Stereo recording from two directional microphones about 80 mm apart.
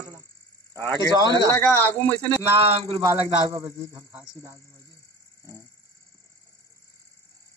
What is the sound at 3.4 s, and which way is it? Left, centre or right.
A man's voice, right.